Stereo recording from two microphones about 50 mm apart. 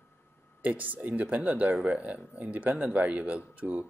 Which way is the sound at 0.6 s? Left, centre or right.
Right.